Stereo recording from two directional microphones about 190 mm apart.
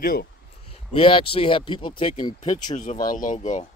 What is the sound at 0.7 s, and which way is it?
Speech, 30° left (ahead or behind).